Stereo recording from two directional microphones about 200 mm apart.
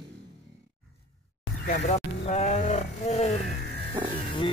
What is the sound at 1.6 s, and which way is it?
Speech, 40° left (ahead or behind).